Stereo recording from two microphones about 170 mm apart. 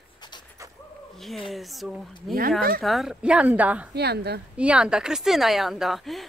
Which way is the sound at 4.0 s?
70° right (ahead or behind).